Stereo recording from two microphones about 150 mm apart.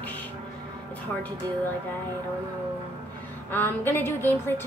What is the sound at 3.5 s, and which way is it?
A woman's voice, 15° left (ahead or behind).